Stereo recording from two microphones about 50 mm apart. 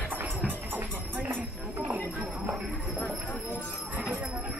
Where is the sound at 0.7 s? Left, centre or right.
Right.